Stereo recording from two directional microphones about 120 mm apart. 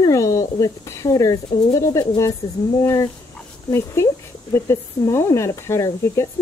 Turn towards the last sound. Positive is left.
turn(degrees=25)  # may be behind; listen again after turning